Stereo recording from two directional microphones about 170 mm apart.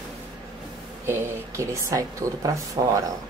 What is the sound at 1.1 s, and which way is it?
Speech, 15° right (ahead or behind).